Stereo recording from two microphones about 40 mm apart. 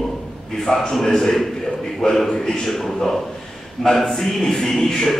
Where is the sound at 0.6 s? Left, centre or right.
Centre.